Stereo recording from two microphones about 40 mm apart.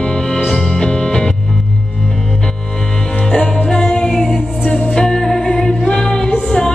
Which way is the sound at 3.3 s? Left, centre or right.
Left.